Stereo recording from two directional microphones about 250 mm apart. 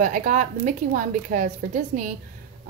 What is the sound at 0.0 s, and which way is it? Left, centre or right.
A woman's voice, right.